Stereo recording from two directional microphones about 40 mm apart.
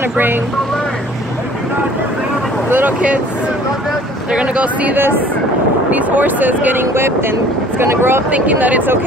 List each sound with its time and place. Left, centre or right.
4.3 s speech: right
5.9 s speech: right
6.8 s speech: right
8.3 s speech: right